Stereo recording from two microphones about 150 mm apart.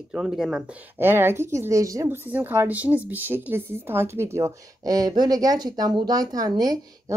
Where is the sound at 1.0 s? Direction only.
15° right (ahead or behind).